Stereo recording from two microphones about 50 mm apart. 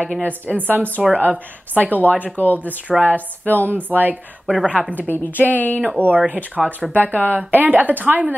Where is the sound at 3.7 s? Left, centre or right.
Right.